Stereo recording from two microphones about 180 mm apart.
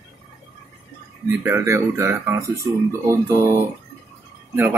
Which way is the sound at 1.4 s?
15° right (ahead or behind).